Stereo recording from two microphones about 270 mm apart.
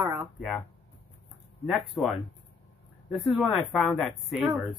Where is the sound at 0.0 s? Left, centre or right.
Centre.